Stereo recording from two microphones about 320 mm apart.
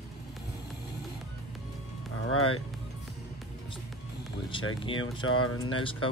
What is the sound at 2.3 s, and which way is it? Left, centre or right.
Speech, left.